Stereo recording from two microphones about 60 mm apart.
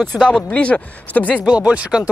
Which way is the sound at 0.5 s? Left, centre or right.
Left.